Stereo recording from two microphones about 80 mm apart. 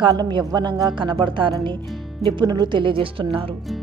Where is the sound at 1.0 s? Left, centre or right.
Right.